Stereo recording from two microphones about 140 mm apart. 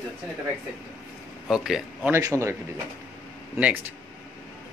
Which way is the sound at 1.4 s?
Centre (ahead or behind).